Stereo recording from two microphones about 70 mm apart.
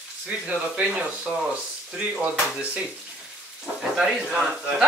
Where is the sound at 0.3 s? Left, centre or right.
Centre.